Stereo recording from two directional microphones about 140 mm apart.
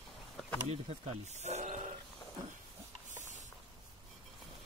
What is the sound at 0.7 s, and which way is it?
Speech, 50° right (ahead or behind).